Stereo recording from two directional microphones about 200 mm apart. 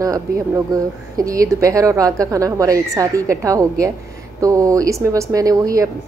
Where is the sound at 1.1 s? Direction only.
15° right (ahead or behind).